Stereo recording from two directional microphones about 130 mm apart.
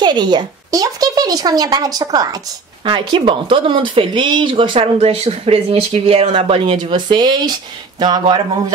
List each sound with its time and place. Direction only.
0.0 s speech: 35° right (ahead or behind)
2.8 s speech: 40° right (ahead or behind)